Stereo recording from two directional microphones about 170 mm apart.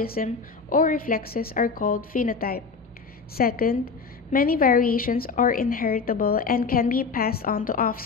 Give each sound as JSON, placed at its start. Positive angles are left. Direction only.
{"t": 0.0, "sound": "a woman's voice", "side_deg": 60}